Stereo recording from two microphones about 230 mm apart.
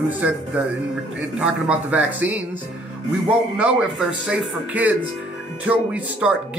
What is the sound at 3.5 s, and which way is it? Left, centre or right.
Speech, centre.